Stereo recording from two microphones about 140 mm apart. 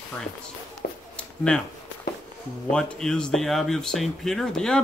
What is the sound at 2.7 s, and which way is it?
Speech, 5° left (ahead or behind).